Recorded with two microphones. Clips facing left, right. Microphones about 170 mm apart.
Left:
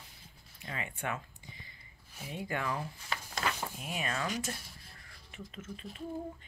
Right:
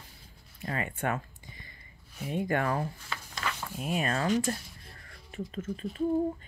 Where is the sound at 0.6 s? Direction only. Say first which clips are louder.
Right 7 dB; 50° right (ahead or behind).